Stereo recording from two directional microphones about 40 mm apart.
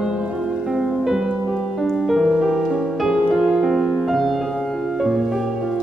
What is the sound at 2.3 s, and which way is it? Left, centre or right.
Music, centre.